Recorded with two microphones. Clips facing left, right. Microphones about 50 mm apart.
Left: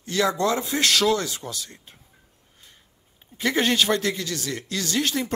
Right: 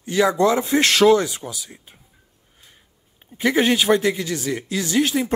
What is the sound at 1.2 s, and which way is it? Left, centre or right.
Speech, centre.